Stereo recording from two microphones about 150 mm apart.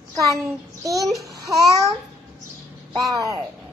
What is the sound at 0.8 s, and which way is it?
Speech, 20° right (ahead or behind).